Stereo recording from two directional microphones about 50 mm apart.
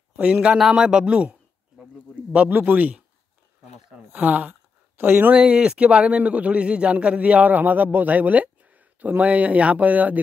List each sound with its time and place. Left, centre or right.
0.1 s speech: right
0.6 s a sound: centre
2.3 s a man's voice: right
5.0 s speech: right
5.4 s a man's voice: right